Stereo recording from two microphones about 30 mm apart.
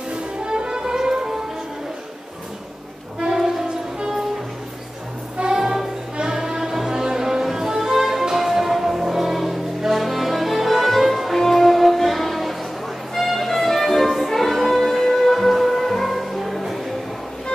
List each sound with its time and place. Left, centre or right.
0.1 s music: right
3.2 s music: centre
5.6 s music: centre